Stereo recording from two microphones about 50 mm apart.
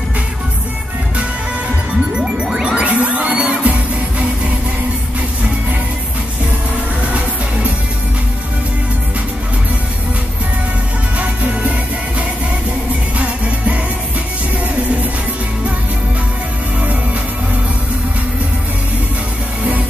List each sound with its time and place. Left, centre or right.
2.1 s music: centre
11.1 s music: right